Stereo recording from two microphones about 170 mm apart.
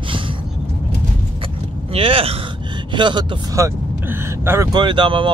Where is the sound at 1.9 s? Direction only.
35° right (ahead or behind).